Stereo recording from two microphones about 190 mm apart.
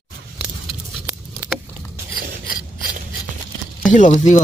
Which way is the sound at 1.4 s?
10° right (ahead or behind).